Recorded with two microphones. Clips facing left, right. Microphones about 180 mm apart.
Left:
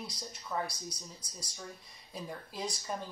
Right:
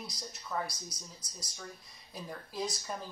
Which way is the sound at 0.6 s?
30° left (ahead or behind).